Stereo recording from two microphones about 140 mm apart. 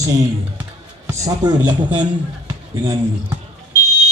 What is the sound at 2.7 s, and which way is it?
Speech, 30° right (ahead or behind).